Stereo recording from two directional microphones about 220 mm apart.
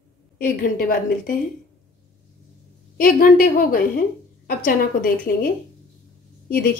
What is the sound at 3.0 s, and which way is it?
A woman's voice, 40° left (ahead or behind).